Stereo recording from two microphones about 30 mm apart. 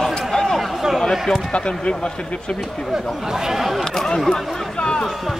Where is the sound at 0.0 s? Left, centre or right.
Centre.